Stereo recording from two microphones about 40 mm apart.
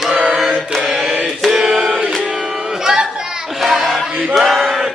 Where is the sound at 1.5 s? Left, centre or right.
Centre.